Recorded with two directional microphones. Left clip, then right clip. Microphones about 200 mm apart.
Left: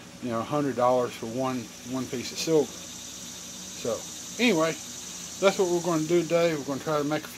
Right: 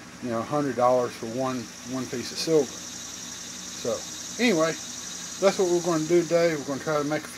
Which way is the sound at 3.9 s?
Centre (ahead or behind).